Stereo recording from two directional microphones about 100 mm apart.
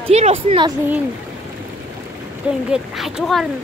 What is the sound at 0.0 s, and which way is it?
Speech, 90° right.